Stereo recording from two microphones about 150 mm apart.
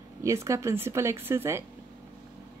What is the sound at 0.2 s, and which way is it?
Speech, 20° right (ahead or behind).